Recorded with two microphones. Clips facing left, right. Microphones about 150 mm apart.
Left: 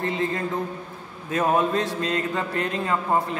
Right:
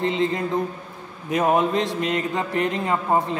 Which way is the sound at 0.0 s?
20° right (ahead or behind).